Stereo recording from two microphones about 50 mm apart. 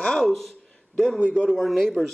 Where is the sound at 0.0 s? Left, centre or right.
Centre.